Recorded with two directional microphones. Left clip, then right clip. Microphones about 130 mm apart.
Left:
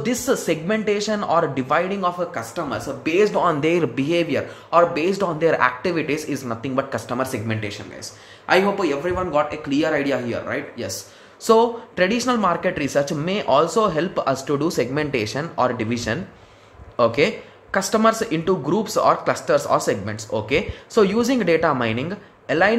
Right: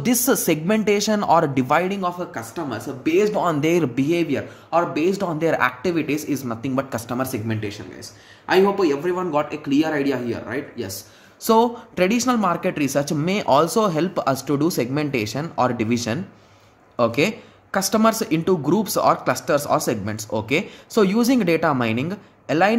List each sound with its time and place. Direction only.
0.0 s speech: 50° right (ahead or behind); by 2.2 s 35° right (ahead or behind)
2.3 s speech: 20° right (ahead or behind)
11.4 s speech: 40° right (ahead or behind)